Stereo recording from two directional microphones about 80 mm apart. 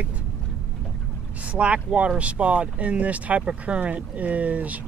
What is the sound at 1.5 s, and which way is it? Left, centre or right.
Speech, centre.